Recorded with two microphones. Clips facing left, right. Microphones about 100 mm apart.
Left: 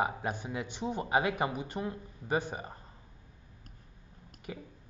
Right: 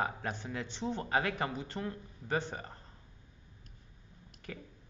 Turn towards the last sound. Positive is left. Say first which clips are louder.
# left 3 dB
turn(degrees=20)  # may be behind; listen again after turning